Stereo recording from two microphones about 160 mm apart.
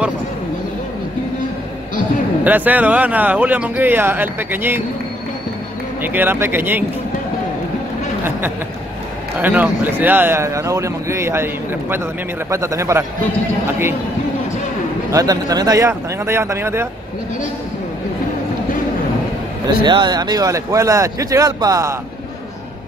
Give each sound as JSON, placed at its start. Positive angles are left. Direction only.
{"t": 2.4, "sound": "a man's voice", "side_deg": -10}
{"t": 6.0, "sound": "a man's voice", "side_deg": -10}
{"t": 9.4, "sound": "a man's voice", "side_deg": -10}
{"t": 15.0, "sound": "speech", "side_deg": -20}
{"t": 19.8, "sound": "speech", "side_deg": -30}